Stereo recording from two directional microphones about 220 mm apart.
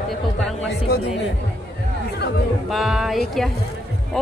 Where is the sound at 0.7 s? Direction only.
45° left (ahead or behind).